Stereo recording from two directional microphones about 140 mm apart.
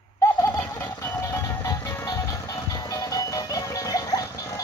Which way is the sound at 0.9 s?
15° left (ahead or behind).